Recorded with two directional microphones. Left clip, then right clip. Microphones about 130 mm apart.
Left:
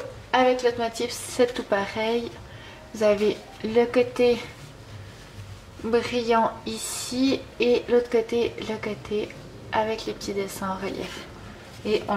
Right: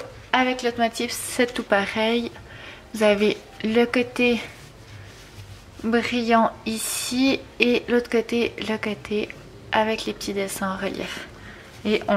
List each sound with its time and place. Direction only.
0.3 s a woman's voice: 40° right (ahead or behind)
5.9 s a woman's voice: 40° right (ahead or behind)